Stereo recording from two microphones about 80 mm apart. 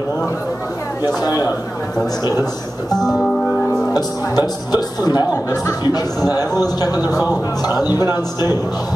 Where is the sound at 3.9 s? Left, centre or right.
Left.